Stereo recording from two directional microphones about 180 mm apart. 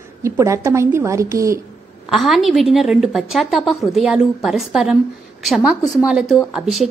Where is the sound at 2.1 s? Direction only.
Centre (ahead or behind).